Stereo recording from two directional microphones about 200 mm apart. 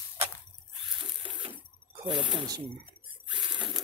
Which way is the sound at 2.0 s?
25° right (ahead or behind).